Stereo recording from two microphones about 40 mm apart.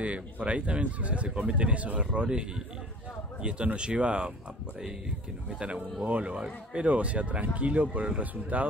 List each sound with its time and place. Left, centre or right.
0.0 s speech: right
2.0 s speech: right
3.6 s speech: right
5.6 s speech: right